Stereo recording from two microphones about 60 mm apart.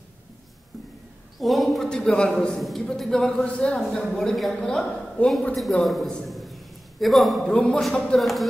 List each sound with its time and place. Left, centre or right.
1.4 s a man's voice: centre
1.9 s a woman's voice: centre
4.1 s a man's voice: centre
6.2 s a sound: centre
7.4 s a woman's voice: centre
8.2 s a man's voice: centre